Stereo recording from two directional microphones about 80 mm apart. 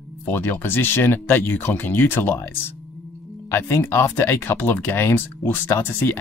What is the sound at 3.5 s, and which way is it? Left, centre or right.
Speech, left.